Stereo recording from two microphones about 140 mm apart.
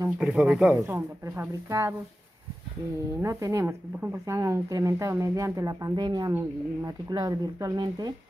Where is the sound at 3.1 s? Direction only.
25° right (ahead or behind).